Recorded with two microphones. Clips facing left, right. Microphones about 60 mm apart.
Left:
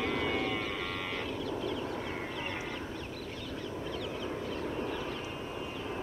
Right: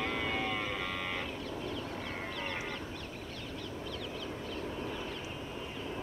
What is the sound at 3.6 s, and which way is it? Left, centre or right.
Crow, left.